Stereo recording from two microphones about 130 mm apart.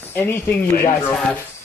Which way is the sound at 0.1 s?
15° left (ahead or behind).